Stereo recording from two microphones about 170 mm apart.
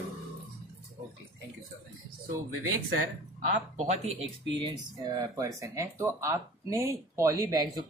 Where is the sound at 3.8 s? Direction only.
40° right (ahead or behind).